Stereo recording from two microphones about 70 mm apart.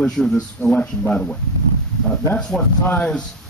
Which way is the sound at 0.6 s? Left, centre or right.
Left.